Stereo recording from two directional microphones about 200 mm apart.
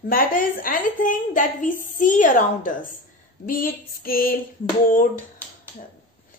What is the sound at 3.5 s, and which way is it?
Female singing, 45° left (ahead or behind).